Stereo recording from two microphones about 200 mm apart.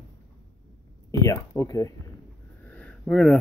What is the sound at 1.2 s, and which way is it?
Speech, 15° left (ahead or behind).